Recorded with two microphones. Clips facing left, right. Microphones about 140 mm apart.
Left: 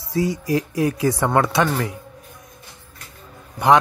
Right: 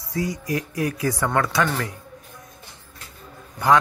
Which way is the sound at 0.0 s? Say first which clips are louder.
Left 5 dB; 25° left (ahead or behind).